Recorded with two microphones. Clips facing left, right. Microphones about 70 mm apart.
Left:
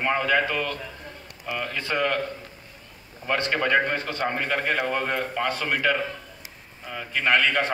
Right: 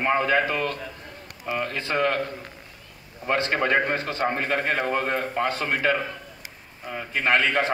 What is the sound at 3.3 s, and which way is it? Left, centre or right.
A man's voice, centre.